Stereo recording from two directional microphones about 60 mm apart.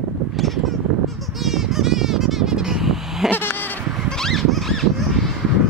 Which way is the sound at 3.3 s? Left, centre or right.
Left.